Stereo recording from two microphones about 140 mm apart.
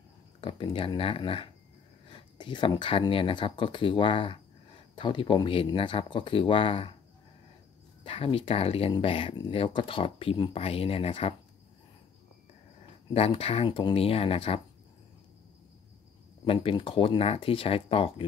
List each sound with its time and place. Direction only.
0.4 s speech: 35° left (ahead or behind)
8.0 s speech: 40° left (ahead or behind)
13.1 s speech: 45° left (ahead or behind)
16.4 s speech: 40° left (ahead or behind)